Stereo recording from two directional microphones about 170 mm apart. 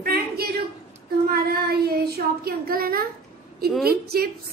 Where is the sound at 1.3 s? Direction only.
65° right (ahead or behind).